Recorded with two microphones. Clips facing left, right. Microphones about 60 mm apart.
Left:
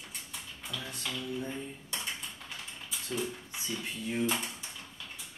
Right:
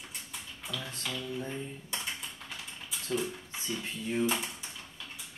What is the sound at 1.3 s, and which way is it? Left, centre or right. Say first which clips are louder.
Typing: even; centre.